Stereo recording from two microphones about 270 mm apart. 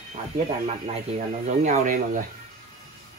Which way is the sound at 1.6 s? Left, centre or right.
Right.